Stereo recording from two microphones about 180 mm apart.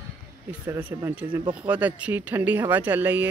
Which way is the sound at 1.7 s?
10° right (ahead or behind).